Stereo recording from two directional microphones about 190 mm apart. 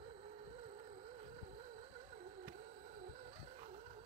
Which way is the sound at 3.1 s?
35° right (ahead or behind).